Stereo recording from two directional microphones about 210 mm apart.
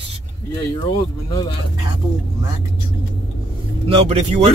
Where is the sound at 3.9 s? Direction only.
30° right (ahead or behind).